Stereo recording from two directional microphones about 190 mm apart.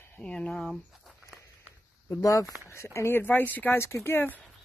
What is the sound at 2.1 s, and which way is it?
Speech, 15° left (ahead or behind).